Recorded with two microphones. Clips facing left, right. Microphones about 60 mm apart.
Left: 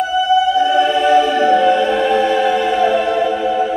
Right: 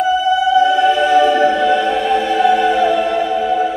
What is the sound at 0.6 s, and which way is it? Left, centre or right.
Music, left.